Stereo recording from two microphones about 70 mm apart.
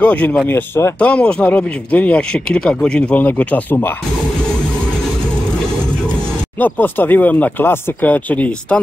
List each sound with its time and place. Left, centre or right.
0.0 s speech: left
0.5 s speech: left
0.9 s speech: centre
6.6 s speech: left